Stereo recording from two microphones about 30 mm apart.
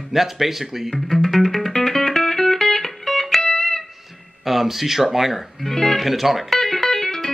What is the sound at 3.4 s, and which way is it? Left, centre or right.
Music, left.